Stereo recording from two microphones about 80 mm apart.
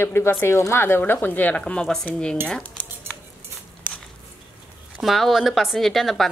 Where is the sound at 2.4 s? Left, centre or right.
Centre.